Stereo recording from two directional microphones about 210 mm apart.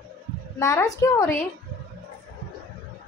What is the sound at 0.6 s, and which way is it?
Speech, 15° left (ahead or behind).